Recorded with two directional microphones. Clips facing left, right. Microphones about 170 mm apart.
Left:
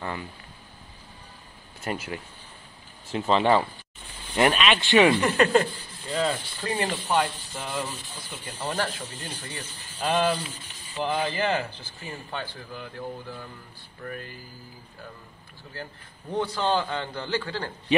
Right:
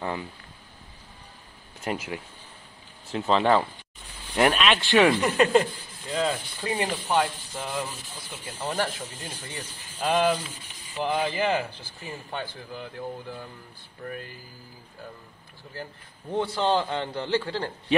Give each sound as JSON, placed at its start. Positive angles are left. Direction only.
{"t": 1.9, "sound": "rub", "side_deg": -10}
{"t": 3.1, "sound": "speech", "side_deg": 0}
{"t": 5.2, "sound": "rub", "side_deg": -10}
{"t": 15.7, "sound": "a man's voice", "side_deg": -20}